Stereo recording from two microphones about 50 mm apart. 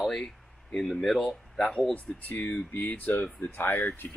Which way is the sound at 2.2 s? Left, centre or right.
Left.